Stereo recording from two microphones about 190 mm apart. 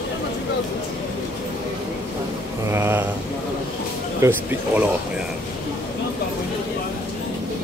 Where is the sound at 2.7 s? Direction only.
15° right (ahead or behind).